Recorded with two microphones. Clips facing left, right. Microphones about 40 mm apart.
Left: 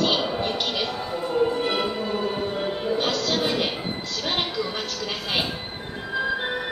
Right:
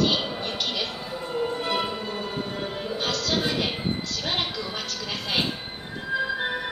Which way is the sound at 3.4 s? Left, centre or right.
Centre.